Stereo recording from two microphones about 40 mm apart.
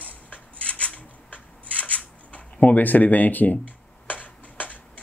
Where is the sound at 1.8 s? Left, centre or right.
Left.